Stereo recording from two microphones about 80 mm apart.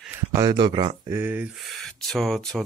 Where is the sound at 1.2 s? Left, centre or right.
Right.